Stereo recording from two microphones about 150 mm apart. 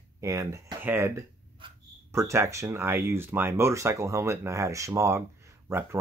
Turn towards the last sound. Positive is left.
turn(degrees=-15)  # may be behind; listen again after turning